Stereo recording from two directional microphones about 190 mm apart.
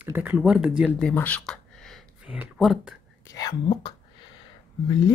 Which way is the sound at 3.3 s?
20° left (ahead or behind).